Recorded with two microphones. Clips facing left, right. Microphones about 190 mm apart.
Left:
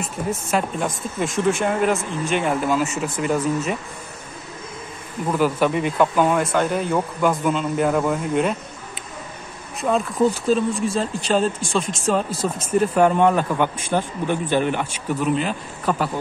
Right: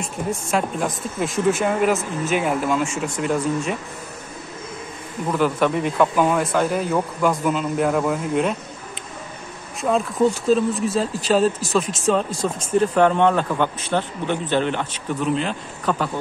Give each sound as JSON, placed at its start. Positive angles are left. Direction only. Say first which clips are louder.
{"t": 0.0, "sound": "speech", "louder": "even", "side_deg": 0}
{"t": 5.3, "sound": "speech", "louder": "even", "side_deg": 5}
{"t": 9.8, "sound": "speech", "louder": "even", "side_deg": 0}